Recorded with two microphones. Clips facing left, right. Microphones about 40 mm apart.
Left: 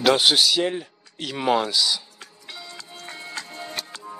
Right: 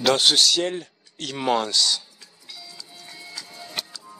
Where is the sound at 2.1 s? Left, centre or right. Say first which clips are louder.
Left 4 dB; left.